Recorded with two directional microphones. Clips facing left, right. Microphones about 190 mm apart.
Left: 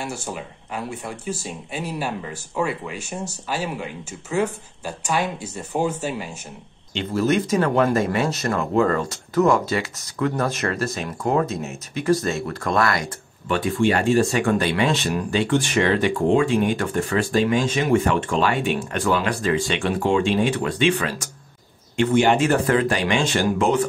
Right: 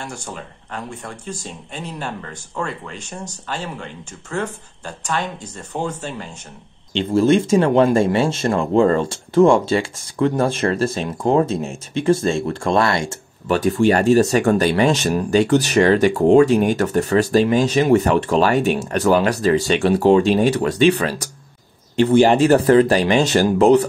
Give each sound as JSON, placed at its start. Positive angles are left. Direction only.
{"t": 0.0, "sound": "speech", "side_deg": 5}
{"t": 6.9, "sound": "speech", "side_deg": -30}
{"t": 13.5, "sound": "speech", "side_deg": -40}